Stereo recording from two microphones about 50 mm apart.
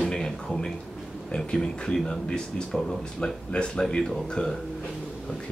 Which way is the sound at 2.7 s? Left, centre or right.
Centre.